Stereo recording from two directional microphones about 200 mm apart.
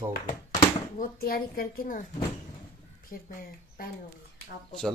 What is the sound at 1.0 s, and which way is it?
A woman's voice, 45° left (ahead or behind).